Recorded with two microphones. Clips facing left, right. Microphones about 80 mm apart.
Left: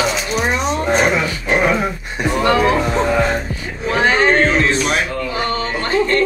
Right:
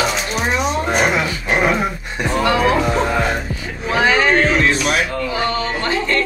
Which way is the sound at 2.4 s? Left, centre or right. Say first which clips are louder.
Left 1 dB; left.